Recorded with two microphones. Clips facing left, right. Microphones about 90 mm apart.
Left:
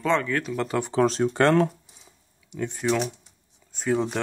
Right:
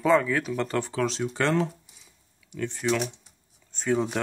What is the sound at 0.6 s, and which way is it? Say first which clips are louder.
Speech: left 1 dB; 15° left (ahead or behind).